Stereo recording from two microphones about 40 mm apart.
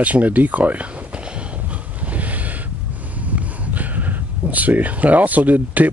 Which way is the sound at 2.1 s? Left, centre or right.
Right.